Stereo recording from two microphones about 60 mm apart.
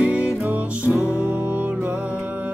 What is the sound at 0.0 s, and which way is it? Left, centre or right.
Music, centre.